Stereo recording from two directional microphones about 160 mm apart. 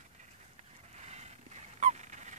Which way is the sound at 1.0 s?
45° right (ahead or behind).